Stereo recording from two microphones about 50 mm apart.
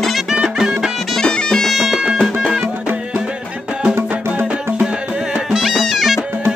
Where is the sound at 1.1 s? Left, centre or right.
Centre.